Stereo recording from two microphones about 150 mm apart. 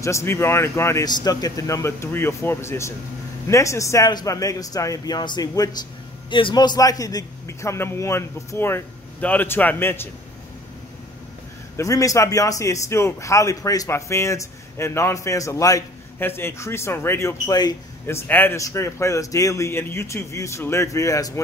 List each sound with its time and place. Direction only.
0.0 s a man's voice: 20° left (ahead or behind)
11.7 s a man's voice: 20° left (ahead or behind)
18.0 s a man's voice: 15° left (ahead or behind)